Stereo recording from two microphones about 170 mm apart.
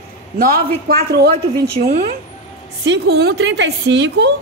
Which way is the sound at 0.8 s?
65° right (ahead or behind).